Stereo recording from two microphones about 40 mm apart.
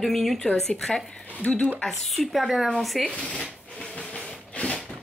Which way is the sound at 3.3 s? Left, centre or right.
Centre.